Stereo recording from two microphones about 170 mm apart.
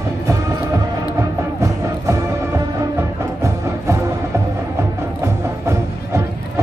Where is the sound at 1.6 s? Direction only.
15° right (ahead or behind).